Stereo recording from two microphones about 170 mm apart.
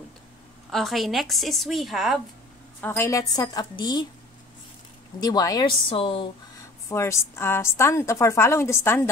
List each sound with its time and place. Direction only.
0.7 s a woman's voice: centre (ahead or behind)
2.8 s a woman's voice: 15° left (ahead or behind)
5.2 s a woman's voice: 20° left (ahead or behind)
6.9 s a woman's voice: 15° left (ahead or behind)